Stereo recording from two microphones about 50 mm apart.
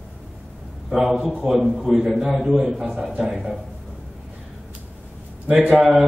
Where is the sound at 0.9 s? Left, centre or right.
Centre.